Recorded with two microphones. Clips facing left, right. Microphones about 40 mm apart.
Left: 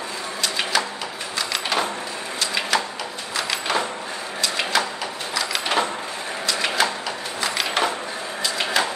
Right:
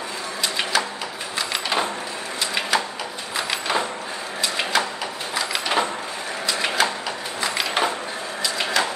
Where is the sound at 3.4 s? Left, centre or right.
Right.